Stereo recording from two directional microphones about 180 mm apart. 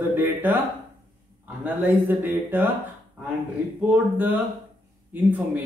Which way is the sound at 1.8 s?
10° right (ahead or behind).